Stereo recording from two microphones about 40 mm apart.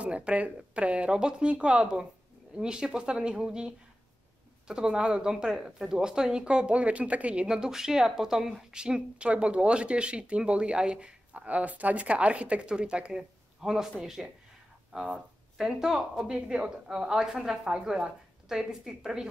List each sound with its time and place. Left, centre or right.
0.0 s speech: right
7.4 s a woman's voice: centre
11.3 s speech: right
13.1 s speech: centre
15.8 s a woman's voice: centre
16.3 s speech: right
16.8 s a woman's voice: centre